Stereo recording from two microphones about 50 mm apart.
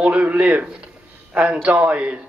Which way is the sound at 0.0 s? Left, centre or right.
Right.